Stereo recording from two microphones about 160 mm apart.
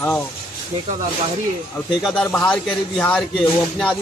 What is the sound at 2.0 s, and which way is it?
A man's voice, 5° left (ahead or behind).